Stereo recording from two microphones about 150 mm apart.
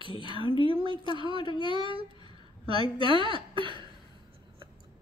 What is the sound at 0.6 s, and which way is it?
Speech, 35° right (ahead or behind).